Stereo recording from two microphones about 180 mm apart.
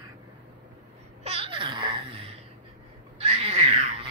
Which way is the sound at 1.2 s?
35° right (ahead or behind).